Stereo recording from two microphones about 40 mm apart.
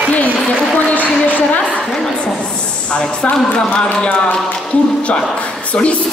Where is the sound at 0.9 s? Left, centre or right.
Left.